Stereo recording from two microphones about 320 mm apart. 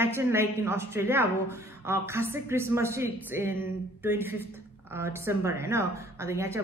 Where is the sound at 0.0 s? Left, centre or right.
Centre.